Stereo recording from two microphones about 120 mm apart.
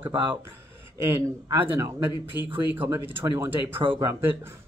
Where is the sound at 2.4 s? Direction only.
15° right (ahead or behind).